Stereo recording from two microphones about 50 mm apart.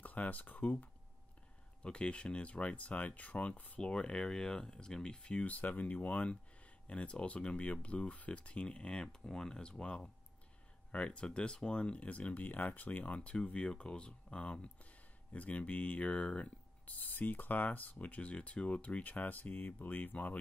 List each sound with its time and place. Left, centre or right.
0.0 s speech: left
3.8 s speech: centre; by 20.3 s left